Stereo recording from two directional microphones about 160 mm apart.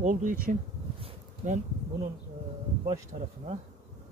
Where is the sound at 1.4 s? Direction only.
55° right (ahead or behind).